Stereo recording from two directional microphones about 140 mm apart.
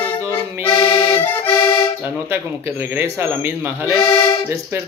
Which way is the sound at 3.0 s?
15° right (ahead or behind).